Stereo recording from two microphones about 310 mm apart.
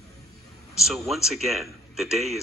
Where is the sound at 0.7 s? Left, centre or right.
Centre.